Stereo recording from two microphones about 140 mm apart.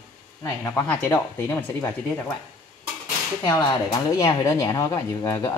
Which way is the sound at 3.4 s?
30° left (ahead or behind).